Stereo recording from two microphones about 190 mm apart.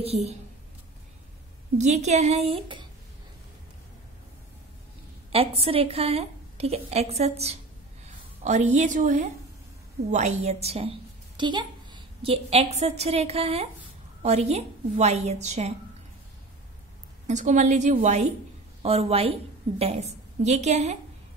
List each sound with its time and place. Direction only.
0.0 s a woman's voice: 35° right (ahead or behind)
1.8 s a woman's voice: 35° right (ahead or behind)
5.3 s a woman's voice: 30° right (ahead or behind)
17.3 s a woman's voice: 40° right (ahead or behind)